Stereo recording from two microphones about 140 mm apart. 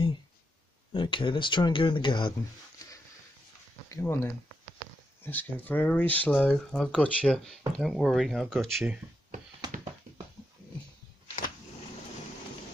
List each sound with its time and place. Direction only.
0.9 s speech: 35° left (ahead or behind)
4.0 s speech: 15° left (ahead or behind)
9.6 s a sound: 30° right (ahead or behind)